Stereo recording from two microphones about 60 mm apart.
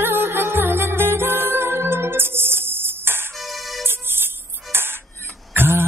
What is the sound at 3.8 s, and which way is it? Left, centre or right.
Music, right.